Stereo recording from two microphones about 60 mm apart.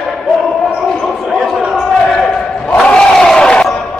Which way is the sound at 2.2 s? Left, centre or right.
Centre.